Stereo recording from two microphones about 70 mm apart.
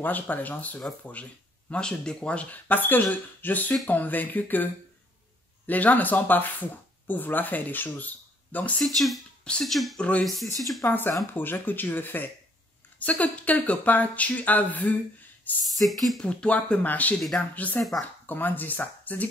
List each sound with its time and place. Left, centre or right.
0.0 s speech: left
5.7 s speech: left
8.8 s speech: centre
9.4 s speech: centre
9.7 s speech: centre
9.9 s speech: centre
10.2 s speech: centre
10.8 s speech: left
15.9 s speech: centre
16.2 s speech: centre
17.7 s speech: centre
18.2 s speech: left